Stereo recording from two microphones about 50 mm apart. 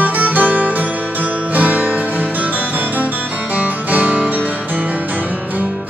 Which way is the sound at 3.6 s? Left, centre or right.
Right.